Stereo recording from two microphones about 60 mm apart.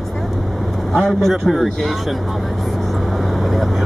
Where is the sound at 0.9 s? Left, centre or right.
Centre.